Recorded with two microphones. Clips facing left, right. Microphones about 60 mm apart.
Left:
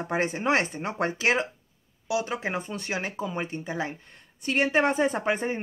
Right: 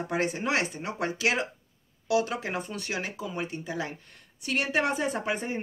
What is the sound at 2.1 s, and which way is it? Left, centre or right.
Speech, left.